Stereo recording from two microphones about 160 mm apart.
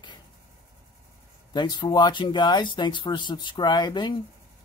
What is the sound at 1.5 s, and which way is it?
Speech, 25° left (ahead or behind).